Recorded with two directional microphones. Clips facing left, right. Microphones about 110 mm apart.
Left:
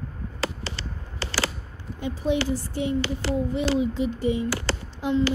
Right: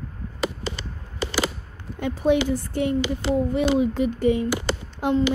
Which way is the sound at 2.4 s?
55° right (ahead or behind).